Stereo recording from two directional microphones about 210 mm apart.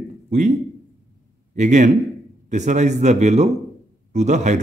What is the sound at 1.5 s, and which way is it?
A man's voice, 35° right (ahead or behind).